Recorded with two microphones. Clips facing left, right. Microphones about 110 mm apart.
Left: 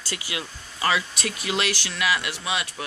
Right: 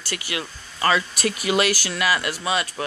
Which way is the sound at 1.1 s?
5° right (ahead or behind).